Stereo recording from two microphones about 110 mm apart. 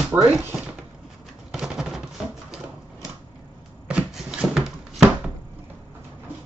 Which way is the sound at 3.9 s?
10° right (ahead or behind).